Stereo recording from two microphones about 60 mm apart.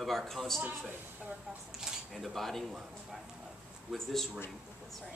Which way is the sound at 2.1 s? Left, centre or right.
Centre.